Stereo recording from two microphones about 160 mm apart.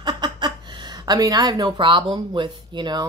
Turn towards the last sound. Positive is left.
turn(degrees=-30)  # may be behind; listen again after turning